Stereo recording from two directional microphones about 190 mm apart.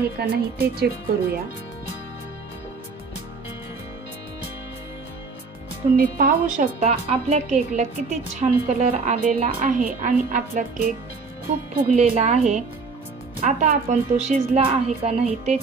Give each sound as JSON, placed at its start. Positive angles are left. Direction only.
{"t": 0.6, "sound": "a woman's voice", "side_deg": -50}
{"t": 5.9, "sound": "a woman's voice", "side_deg": -50}